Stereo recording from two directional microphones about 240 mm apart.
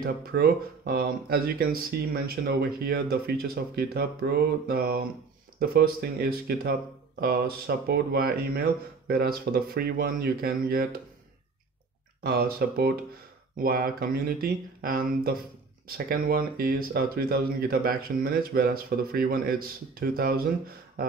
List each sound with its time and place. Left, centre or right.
0.0 s speech: right
12.3 s speech: right